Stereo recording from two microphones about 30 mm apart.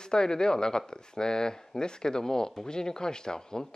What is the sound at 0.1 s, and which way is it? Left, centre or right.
Speech, left.